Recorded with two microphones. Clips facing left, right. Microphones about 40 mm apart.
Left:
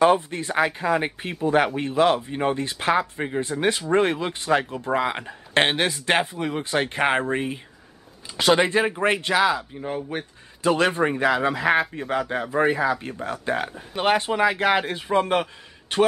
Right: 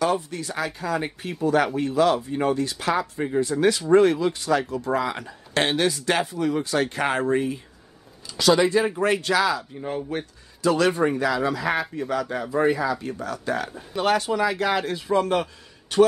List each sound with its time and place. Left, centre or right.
0.0 s speech: left
9.8 s speech: centre
10.6 s speech: left